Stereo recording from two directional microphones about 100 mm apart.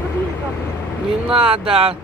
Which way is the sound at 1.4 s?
65° right (ahead or behind).